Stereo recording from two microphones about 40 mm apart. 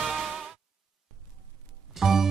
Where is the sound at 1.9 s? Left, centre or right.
Centre.